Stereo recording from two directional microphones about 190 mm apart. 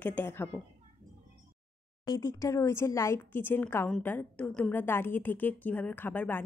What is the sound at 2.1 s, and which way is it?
A woman's voice, 20° left (ahead or behind).